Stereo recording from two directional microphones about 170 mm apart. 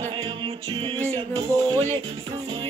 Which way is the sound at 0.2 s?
30° right (ahead or behind).